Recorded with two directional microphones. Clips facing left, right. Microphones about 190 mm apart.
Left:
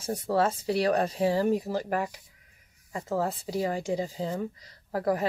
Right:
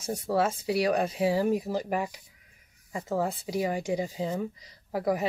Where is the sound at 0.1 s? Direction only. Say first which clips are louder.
Left 1 dB; 10° right (ahead or behind).